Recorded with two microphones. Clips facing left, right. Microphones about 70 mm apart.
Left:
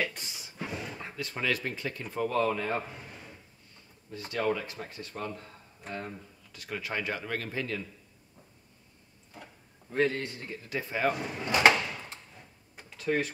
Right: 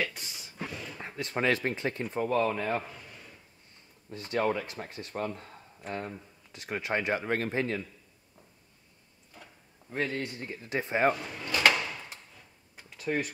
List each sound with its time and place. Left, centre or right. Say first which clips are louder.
0.0 s a sound: even; centre
0.7 s a sound: left 5 dB; centre
1.0 s speech: right 5 dB; right
2.7 s a man's voice: right 1 dB; left
4.3 s speech: right 1 dB; right
10.1 s speech: right 1 dB; right
11.1 s speech: left 4 dB; left